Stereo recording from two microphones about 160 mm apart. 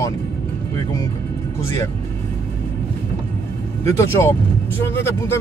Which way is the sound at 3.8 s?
15° left (ahead or behind).